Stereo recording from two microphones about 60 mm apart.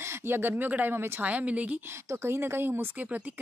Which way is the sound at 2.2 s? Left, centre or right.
Right.